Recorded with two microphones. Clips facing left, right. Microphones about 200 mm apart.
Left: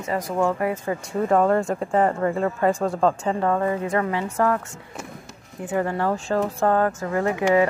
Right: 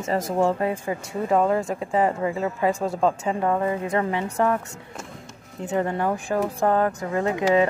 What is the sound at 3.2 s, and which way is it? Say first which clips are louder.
Speech: left 1 dB; 15° right (ahead or behind).